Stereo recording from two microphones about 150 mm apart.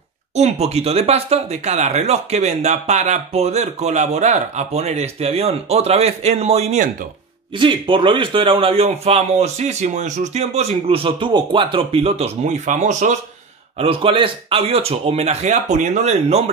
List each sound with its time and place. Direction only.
0.4 s speech: 45° right (ahead or behind)
7.5 s a man's voice: 35° right (ahead or behind); by 13.1 s 55° right (ahead or behind)
13.7 s speech: 40° right (ahead or behind)